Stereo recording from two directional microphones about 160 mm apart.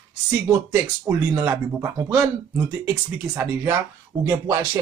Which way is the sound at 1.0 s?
15° right (ahead or behind).